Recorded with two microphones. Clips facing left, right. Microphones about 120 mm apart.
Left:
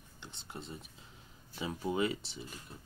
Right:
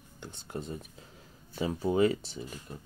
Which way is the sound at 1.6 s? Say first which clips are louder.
Right 7 dB; 35° right (ahead or behind).